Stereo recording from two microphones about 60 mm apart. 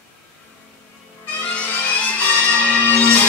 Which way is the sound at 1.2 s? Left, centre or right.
Left.